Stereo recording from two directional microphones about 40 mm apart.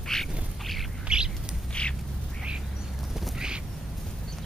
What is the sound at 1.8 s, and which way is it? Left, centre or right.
Duck, left.